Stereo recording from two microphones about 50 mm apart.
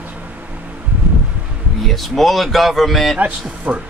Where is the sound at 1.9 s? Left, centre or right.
Centre.